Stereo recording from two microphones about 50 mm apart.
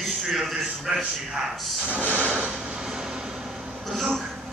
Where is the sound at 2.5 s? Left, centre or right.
Centre.